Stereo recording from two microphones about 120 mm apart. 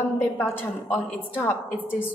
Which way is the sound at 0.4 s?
20° left (ahead or behind).